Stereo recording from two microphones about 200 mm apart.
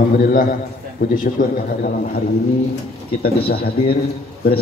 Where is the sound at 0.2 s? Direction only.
45° left (ahead or behind).